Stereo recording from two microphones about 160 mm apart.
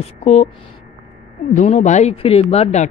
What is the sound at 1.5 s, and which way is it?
Speech, 45° left (ahead or behind).